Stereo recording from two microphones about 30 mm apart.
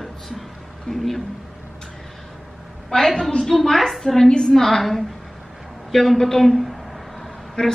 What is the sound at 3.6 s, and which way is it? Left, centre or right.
A man's voice, centre.